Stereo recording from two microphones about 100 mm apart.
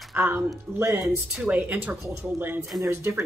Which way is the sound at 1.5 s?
15° right (ahead or behind).